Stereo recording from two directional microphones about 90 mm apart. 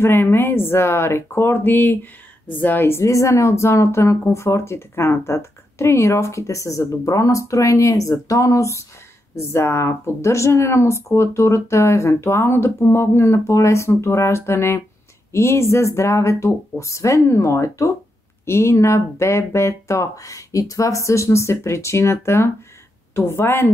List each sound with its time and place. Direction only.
0.0 s a woman's voice: 25° left (ahead or behind)